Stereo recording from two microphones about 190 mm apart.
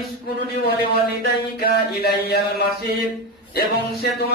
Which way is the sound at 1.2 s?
55° left (ahead or behind).